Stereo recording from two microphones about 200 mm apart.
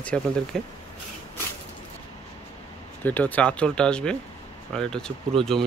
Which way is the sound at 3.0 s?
10° left (ahead or behind).